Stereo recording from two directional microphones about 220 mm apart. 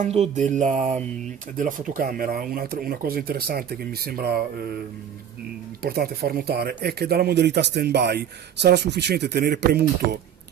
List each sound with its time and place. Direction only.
0.0 s mantra: 30° right (ahead or behind)
1.6 s speech: 40° right (ahead or behind)
5.8 s speech: 45° right (ahead or behind)